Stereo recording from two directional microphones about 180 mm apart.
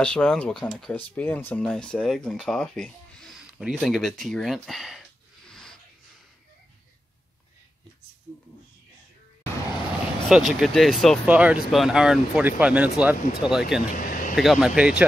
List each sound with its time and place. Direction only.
0.0 s speech: 5° left (ahead or behind)
5.5 s a sound: 5° left (ahead or behind)
10.2 s speech: centre (ahead or behind)
13.9 s vehicle: 50° left (ahead or behind)
14.3 s speech: centre (ahead or behind)